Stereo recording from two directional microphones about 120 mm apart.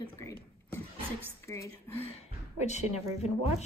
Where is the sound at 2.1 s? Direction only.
70° left (ahead or behind).